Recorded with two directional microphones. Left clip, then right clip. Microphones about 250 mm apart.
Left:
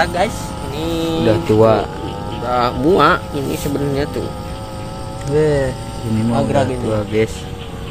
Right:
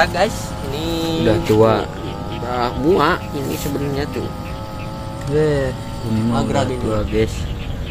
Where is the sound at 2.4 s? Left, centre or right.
Left.